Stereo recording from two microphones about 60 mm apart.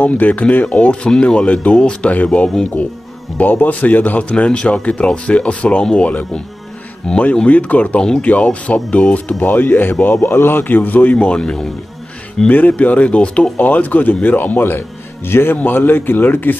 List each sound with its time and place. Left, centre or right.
0.0 s speech: left
3.3 s speech: left
9.4 s speech: left; by 11.7 s centre
12.4 s speech: left